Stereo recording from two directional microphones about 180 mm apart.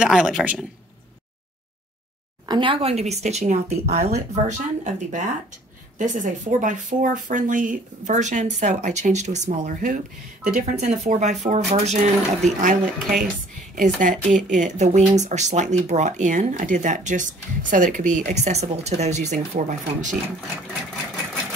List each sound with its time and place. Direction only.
0.0 s a man's voice: 5° right (ahead or behind)
2.4 s speech: 25° right (ahead or behind); by 20.2 s 45° right (ahead or behind)